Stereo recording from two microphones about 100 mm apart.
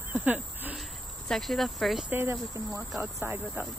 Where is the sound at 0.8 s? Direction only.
5° left (ahead or behind).